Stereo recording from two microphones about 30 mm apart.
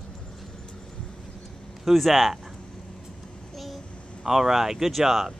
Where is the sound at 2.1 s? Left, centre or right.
Centre.